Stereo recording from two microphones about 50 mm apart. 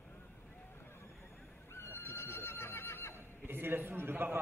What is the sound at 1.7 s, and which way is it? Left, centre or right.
Neigh, left.